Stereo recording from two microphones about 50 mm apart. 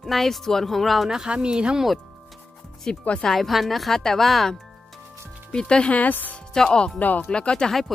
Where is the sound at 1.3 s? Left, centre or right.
Centre.